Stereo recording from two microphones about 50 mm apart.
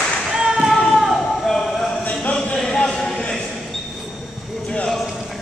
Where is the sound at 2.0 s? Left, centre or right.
Left.